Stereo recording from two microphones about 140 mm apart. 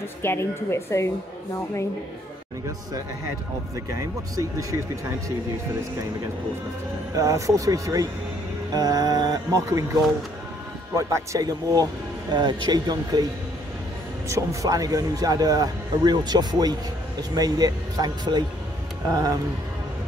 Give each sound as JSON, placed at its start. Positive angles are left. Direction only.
{"t": 0.2, "sound": "a woman's voice", "side_deg": 20}
{"t": 3.7, "sound": "speech", "side_deg": -25}
{"t": 7.2, "sound": "speech", "side_deg": -25}
{"t": 11.0, "sound": "speech", "side_deg": -20}
{"t": 14.3, "sound": "speech", "side_deg": -25}